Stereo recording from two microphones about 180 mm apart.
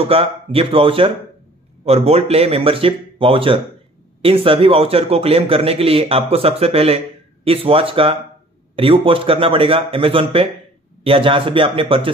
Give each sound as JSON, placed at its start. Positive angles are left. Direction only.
{"t": 0.0, "sound": "a man's voice", "side_deg": -30}